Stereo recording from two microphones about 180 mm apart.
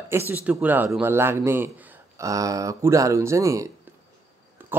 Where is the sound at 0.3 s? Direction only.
10° right (ahead or behind).